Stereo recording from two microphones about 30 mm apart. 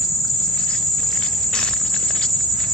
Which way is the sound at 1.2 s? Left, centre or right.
Left.